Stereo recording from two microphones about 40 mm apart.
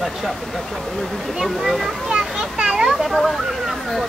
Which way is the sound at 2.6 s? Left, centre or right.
Centre.